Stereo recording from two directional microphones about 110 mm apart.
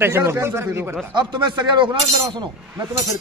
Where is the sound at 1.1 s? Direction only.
45° right (ahead or behind).